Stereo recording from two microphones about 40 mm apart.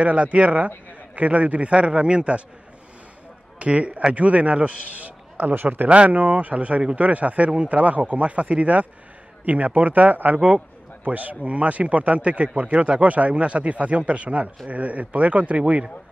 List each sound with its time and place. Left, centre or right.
0.0 s a man's voice: right
3.5 s a man's voice: right
5.9 s a man's voice: right